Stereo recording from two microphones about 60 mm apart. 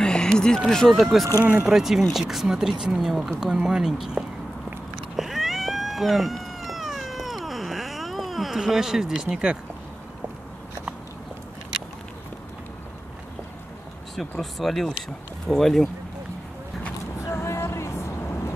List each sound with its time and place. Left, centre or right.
0.0 s a sound: centre
0.6 s speech: centre
1.4 s speech: right
1.7 s speech: centre
5.1 s cat: centre
14.1 s speech: centre
17.3 s a sound: left